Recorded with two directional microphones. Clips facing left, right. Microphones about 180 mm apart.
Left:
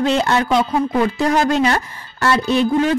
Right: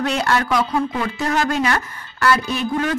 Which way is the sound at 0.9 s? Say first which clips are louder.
Left 5 dB; 35° left (ahead or behind).